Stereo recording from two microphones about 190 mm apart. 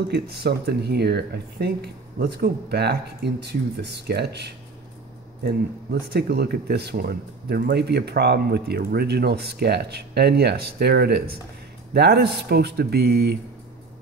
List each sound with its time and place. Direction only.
0.1 s speech: 60° right (ahead or behind)